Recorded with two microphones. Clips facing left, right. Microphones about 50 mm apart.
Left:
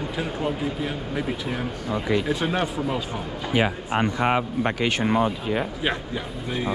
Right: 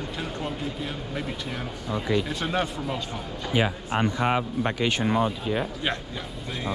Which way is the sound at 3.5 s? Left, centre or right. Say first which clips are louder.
Left 2 dB; left.